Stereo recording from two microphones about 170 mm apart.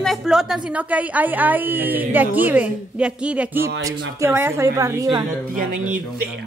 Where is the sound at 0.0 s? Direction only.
Centre (ahead or behind); by 5.2 s 20° right (ahead or behind).